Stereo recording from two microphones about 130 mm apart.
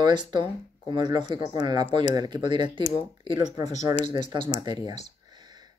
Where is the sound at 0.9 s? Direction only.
35° right (ahead or behind).